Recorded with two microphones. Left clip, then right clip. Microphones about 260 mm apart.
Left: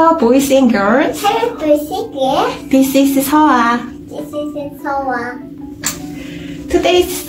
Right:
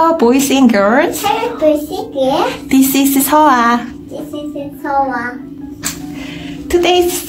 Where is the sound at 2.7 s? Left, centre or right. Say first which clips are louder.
Left 1 dB; right.